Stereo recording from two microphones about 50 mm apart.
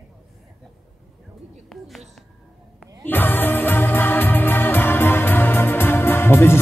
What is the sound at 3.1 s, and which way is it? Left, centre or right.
Music, left.